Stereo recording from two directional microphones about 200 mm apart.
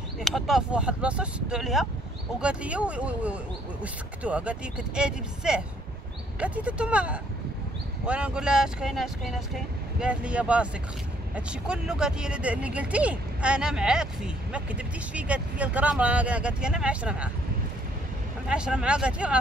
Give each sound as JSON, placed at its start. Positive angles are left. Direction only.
{"t": 0.2, "sound": "speech", "side_deg": 0}
{"t": 18.5, "sound": "speech", "side_deg": -5}